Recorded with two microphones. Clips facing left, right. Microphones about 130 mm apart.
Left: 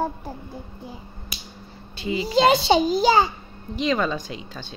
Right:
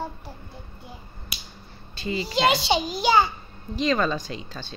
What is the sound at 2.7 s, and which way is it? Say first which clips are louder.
Speech: left 3 dB; 40° left (ahead or behind).